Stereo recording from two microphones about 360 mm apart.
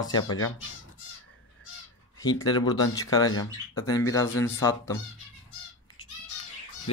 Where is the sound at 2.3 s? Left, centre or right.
Centre.